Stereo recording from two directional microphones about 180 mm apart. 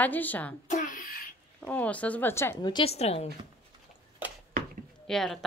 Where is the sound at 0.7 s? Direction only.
45° left (ahead or behind).